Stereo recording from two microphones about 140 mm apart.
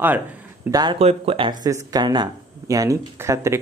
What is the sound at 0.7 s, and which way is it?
Speech, 25° right (ahead or behind).